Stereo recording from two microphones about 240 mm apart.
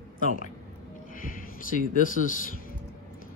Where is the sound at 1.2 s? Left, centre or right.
Left.